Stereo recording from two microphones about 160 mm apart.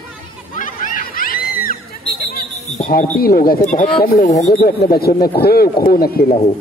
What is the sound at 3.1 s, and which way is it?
Speech, 65° left (ahead or behind).